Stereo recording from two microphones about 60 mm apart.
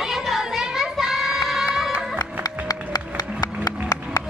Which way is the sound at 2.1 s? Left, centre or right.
Left.